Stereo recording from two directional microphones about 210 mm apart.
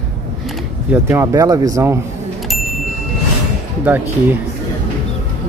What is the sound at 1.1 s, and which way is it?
Speech, 15° right (ahead or behind).